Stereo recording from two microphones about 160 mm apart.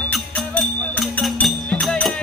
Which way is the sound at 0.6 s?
5° left (ahead or behind).